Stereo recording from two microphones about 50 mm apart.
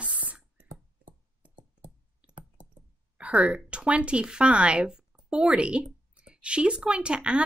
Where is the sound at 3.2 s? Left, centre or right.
Right.